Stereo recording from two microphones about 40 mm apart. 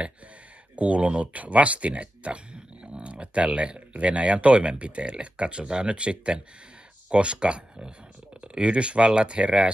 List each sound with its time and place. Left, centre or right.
0.7 s speech: right